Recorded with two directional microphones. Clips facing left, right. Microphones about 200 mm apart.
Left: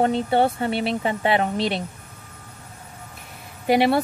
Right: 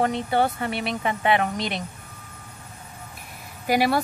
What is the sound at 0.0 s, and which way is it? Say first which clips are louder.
Speech: left 3 dB; 30° left (ahead or behind).